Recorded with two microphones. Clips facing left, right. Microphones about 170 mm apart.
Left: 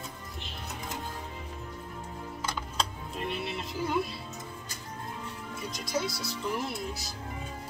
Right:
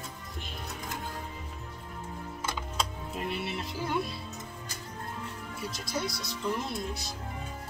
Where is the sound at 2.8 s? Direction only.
Centre (ahead or behind).